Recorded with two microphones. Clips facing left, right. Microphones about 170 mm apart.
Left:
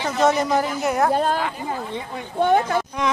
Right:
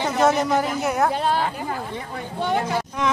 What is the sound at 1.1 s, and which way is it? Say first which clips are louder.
Speech: left 2 dB; 45° left (ahead or behind).